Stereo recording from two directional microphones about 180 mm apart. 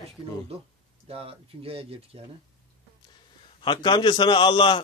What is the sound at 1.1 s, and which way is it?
A man's voice, 30° right (ahead or behind).